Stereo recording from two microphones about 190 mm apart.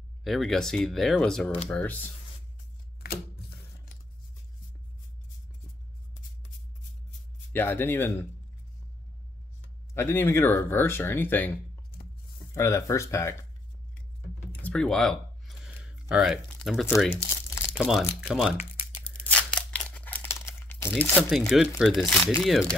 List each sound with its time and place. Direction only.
0.2 s speech: centre (ahead or behind)
3.0 s a sound: 55° left (ahead or behind)
7.5 s speech: 10° left (ahead or behind)
9.9 s speech: 10° left (ahead or behind)
12.5 s speech: 15° left (ahead or behind)
14.5 s a sound: 5° left (ahead or behind)
17.1 s crumpling: 10° left (ahead or behind)
17.8 s speech: centre (ahead or behind)
19.2 s crumpling: 5° left (ahead or behind)
21.0 s speech: 5° left (ahead or behind)